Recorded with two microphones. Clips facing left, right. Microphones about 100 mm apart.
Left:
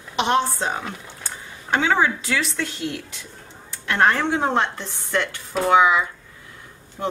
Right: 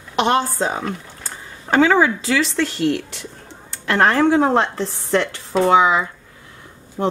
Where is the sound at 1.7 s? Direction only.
90° right.